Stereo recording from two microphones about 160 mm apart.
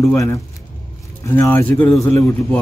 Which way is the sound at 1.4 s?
15° left (ahead or behind).